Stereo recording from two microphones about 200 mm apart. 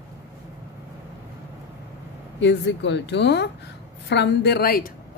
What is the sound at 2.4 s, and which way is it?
A woman's voice, 60° left (ahead or behind).